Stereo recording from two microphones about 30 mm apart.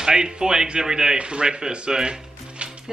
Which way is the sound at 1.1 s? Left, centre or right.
Right.